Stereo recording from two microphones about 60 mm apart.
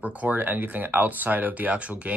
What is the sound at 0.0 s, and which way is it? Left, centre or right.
Speech, right.